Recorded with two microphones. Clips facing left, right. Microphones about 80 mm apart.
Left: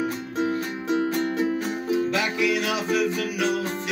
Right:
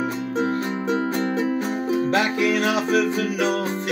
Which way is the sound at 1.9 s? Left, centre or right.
Right.